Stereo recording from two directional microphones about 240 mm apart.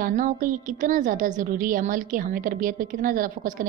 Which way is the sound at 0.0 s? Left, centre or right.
Right.